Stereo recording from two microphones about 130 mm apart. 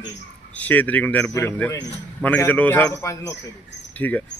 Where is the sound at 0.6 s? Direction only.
10° left (ahead or behind).